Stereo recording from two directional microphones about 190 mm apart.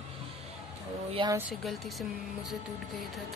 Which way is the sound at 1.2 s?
25° right (ahead or behind).